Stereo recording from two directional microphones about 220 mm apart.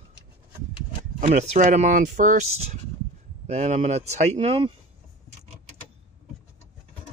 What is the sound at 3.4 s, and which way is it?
Speech, 30° right (ahead or behind).